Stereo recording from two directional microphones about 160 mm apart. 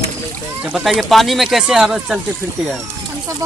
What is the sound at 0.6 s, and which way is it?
Speech, 5° right (ahead or behind).